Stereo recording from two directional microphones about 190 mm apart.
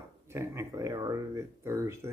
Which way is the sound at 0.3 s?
15° right (ahead or behind).